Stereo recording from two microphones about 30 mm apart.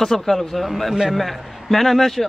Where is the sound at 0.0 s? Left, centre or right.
Centre.